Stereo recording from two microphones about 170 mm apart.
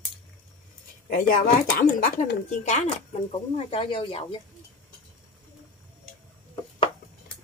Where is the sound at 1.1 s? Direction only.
55° left (ahead or behind).